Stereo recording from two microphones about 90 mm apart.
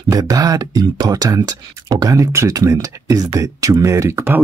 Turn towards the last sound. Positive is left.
turn(degrees=-30)  # may be behind; listen again after turning